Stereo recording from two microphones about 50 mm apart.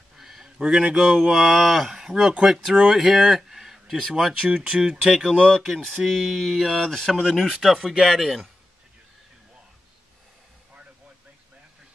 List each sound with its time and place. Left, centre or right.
0.2 s a sound: centre
0.6 s speech: centre
4.5 s speech: centre
5.6 s speech: centre